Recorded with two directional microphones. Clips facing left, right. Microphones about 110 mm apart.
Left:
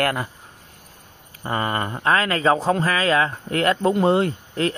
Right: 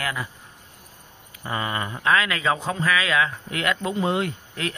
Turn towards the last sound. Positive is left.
turn(degrees=35)  # may be behind; listen again after turning